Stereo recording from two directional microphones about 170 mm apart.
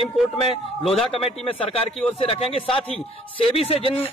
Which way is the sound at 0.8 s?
Centre (ahead or behind).